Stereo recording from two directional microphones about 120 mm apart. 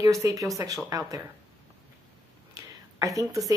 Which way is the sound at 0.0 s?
25° right (ahead or behind).